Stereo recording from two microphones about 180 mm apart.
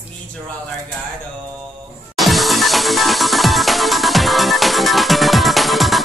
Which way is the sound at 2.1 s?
Centre (ahead or behind).